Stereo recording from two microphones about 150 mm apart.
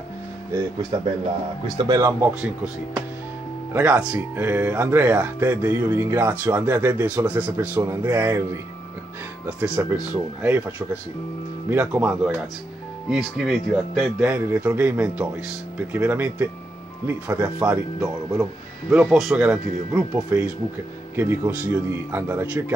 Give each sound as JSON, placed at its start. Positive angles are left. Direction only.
{"t": 1.8, "sound": "speech", "side_deg": -25}
{"t": 3.7, "sound": "speech", "side_deg": -10}
{"t": 9.8, "sound": "speech", "side_deg": -10}
{"t": 18.9, "sound": "speech", "side_deg": -5}